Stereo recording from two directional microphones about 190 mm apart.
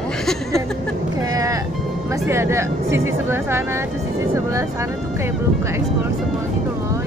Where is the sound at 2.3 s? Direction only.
15° right (ahead or behind).